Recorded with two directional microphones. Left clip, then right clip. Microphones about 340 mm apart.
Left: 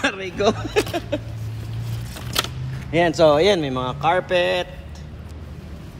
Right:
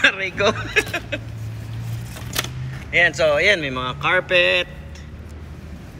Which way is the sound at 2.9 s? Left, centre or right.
Centre.